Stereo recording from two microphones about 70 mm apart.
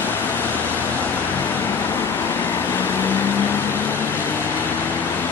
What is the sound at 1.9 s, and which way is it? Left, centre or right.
Vehicle, left.